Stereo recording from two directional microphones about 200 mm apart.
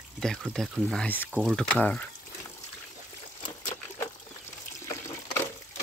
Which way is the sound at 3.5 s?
15° left (ahead or behind).